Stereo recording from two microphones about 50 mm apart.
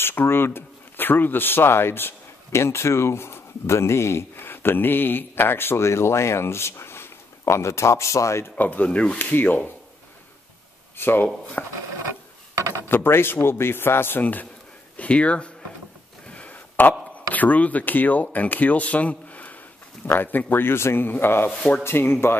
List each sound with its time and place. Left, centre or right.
0.0 s speech: left
2.5 s speech: left
8.5 s speech: left
9.3 s speech: left
11.0 s speech: left
12.5 s a sound: right
12.8 s speech: left
14.2 s speech: left
16.3 s a sound: left
16.8 s speech: left
20.1 s speech: left